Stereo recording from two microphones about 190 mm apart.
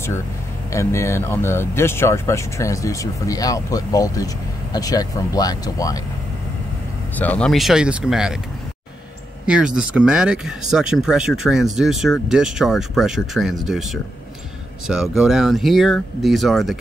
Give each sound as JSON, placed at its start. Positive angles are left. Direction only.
{"t": 0.7, "sound": "speech", "side_deg": 15}
{"t": 7.2, "sound": "speech", "side_deg": 5}
{"t": 9.5, "sound": "speech", "side_deg": -5}
{"t": 14.9, "sound": "speech", "side_deg": 0}